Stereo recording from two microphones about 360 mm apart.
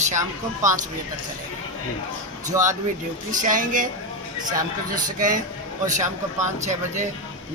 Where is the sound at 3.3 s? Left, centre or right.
Right.